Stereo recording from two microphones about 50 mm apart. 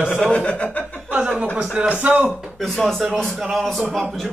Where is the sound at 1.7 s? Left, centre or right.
Right.